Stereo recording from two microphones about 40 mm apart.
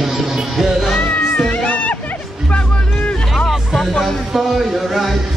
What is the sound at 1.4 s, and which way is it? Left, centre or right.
Music, left.